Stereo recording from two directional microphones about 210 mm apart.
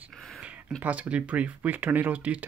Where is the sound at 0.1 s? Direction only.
Centre (ahead or behind).